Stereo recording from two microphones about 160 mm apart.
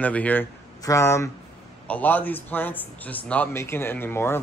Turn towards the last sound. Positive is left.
turn(degrees=15)  # may be behind; listen again after turning